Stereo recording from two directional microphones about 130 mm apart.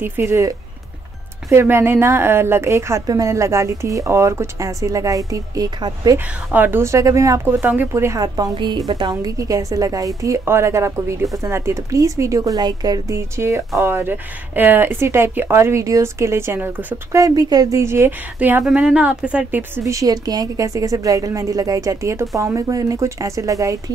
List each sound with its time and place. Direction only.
0.0 s a woman's voice: 15° right (ahead or behind); by 6.1 s 30° right (ahead or behind)
6.1 s a woman's voice: 15° right (ahead or behind)
17.2 s a woman's voice: 30° right (ahead or behind)
18.6 s speech: 5° right (ahead or behind)
19.8 s a woman's voice: 25° right (ahead or behind)